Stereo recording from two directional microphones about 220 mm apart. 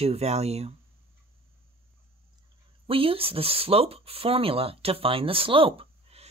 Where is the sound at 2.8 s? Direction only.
25° right (ahead or behind).